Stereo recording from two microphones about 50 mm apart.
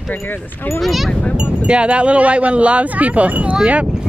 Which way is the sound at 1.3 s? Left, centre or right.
Centre.